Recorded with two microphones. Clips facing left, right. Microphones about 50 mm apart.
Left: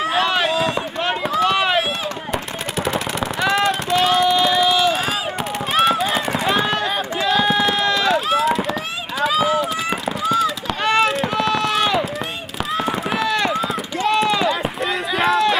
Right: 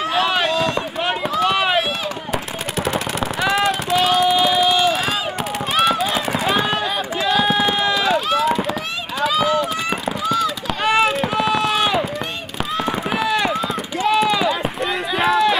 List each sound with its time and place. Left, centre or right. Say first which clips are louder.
0.2 s run: right 1 dB; centre
0.5 s a sound: even; centre
1.4 s run: even; centre
2.3 s machine gun: right 1 dB; centre
5.7 s run: left 1 dB; centre
8.4 s fireworks: even; centre
9.2 s run: even; centre
10.8 s run: even; centre
13.1 s run: right 1 dB; centre